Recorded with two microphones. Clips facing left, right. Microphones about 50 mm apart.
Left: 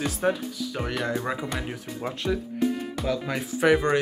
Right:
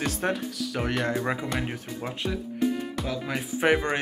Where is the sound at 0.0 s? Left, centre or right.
Right.